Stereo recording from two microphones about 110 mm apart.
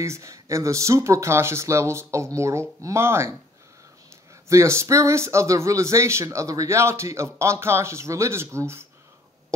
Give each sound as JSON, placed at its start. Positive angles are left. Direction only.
{"t": 0.0, "sound": "speech", "side_deg": -25}
{"t": 4.5, "sound": "speech", "side_deg": -25}